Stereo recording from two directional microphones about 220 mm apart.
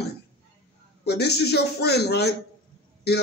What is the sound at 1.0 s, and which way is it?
Speech, 50° left (ahead or behind).